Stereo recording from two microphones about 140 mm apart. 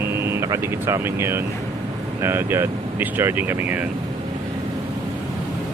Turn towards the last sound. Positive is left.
turn(degrees=-10)  # may be behind; listen again after turning